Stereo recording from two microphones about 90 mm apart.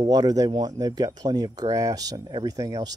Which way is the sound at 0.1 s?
45° right (ahead or behind).